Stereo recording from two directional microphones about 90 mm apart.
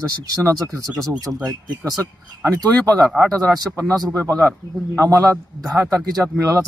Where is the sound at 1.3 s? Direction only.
10° right (ahead or behind).